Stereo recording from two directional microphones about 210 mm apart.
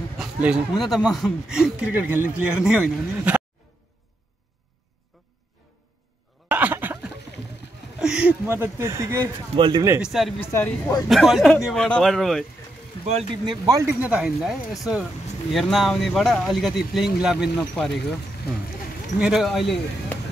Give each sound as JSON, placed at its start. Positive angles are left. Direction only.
{"t": 0.2, "sound": "speech", "side_deg": -5}
{"t": 6.5, "sound": "a sound", "side_deg": -10}
{"t": 8.0, "sound": "speech", "side_deg": -5}
{"t": 9.9, "sound": "speech", "side_deg": 0}
{"t": 10.4, "sound": "speech", "side_deg": 10}
{"t": 11.1, "sound": "speech", "side_deg": 0}
{"t": 13.0, "sound": "speech", "side_deg": -25}
{"t": 19.1, "sound": "speech", "side_deg": 0}